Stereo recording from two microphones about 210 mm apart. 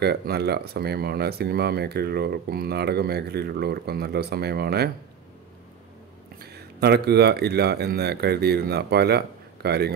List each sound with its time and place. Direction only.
0.0 s speech: 50° right (ahead or behind)
6.4 s speech: 50° right (ahead or behind)